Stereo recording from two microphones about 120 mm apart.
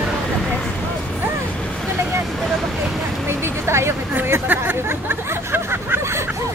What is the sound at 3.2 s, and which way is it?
Hubbub, 20° right (ahead or behind).